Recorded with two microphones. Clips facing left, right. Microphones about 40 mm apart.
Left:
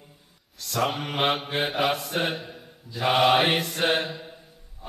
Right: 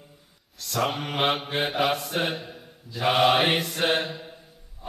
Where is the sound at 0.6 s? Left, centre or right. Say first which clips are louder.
Even; centre.